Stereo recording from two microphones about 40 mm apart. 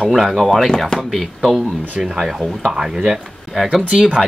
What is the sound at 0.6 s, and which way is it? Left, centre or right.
Speech, centre.